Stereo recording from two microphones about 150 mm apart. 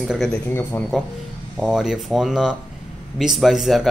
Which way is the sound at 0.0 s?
Centre (ahead or behind).